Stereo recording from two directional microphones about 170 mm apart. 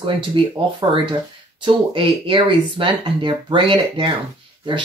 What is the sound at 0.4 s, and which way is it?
Speech, 30° right (ahead or behind).